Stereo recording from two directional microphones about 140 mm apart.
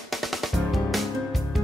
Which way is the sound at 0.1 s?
Centre (ahead or behind).